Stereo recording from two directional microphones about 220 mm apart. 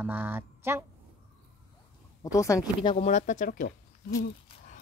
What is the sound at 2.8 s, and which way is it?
Speech, 25° left (ahead or behind).